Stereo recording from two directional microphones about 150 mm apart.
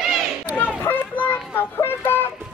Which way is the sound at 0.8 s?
15° left (ahead or behind).